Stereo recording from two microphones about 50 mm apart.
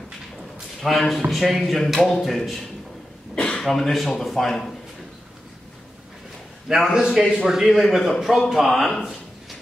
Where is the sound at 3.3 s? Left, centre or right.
Centre.